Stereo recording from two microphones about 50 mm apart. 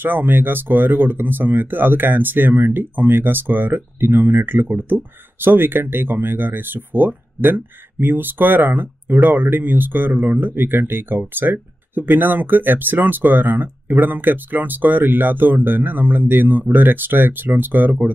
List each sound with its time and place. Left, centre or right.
0.0 s speech: right